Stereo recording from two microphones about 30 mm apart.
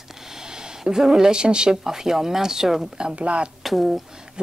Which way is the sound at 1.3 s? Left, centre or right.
Right.